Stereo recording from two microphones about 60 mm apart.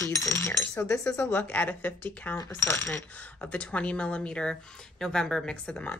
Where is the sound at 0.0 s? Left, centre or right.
Left.